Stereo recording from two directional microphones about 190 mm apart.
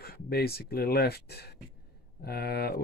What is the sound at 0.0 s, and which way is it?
Speech, 55° left (ahead or behind).